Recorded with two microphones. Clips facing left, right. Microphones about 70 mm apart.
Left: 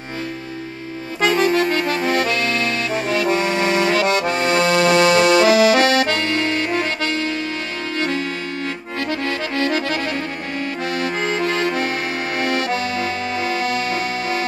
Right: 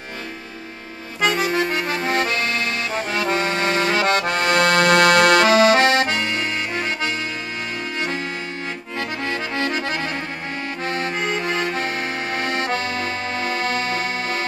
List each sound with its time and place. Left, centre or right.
1.2 s accordion: centre
1.7 s accordion: centre
2.0 s music: right
3.7 s accordion: right
5.8 s accordion: right
6.3 s accordion: centre; by 11.1 s right
11.1 s accordion: centre
12.4 s accordion: right